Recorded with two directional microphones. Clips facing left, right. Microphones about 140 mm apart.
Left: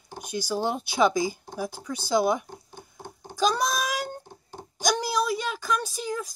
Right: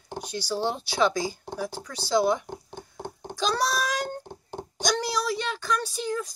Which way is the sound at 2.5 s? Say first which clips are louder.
Right 5 dB; 65° right (ahead or behind).